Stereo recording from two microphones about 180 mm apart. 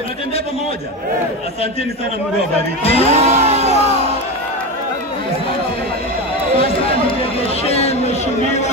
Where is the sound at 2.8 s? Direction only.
35° left (ahead or behind).